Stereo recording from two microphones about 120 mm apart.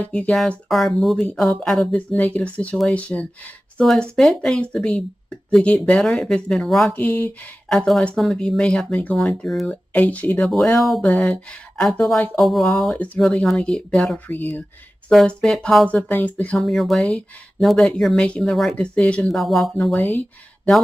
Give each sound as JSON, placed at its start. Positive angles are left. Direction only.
{"t": 0.0, "sound": "speech", "side_deg": 10}
{"t": 6.9, "sound": "speech", "side_deg": 10}
{"t": 10.8, "sound": "speech", "side_deg": 0}
{"t": 12.9, "sound": "speech", "side_deg": 10}
{"t": 13.2, "sound": "speech", "side_deg": 0}
{"t": 15.0, "sound": "speech", "side_deg": 5}
{"t": 15.9, "sound": "speech", "side_deg": 15}
{"t": 16.5, "sound": "speech", "side_deg": 0}
{"t": 20.0, "sound": "speech", "side_deg": 15}